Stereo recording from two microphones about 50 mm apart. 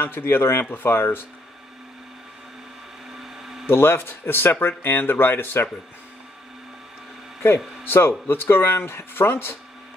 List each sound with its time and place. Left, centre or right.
0.0 s speech: left
3.2 s a sound: centre
3.6 s speech: left
7.4 s speech: left